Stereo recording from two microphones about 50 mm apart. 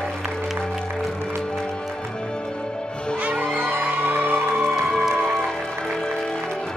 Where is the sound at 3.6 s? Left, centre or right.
Right.